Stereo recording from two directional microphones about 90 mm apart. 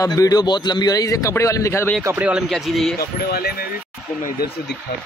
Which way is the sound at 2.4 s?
Centre (ahead or behind).